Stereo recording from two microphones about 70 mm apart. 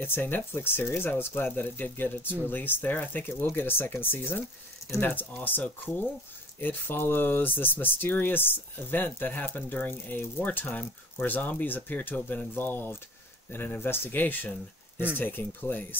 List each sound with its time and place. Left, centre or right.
0.0 s speech: left
5.4 s speech: left